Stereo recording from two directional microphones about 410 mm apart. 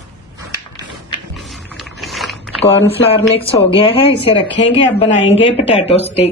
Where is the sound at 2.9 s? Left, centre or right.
Centre.